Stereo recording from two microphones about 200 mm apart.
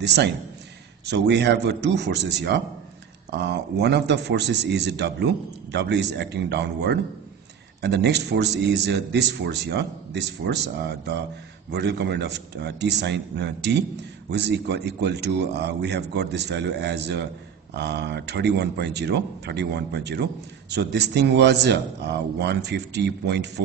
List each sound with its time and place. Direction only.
0.0 s a man's voice: 55° right (ahead or behind)